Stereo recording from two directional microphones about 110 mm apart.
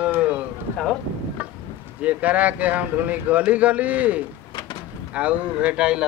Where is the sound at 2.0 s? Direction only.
15° right (ahead or behind).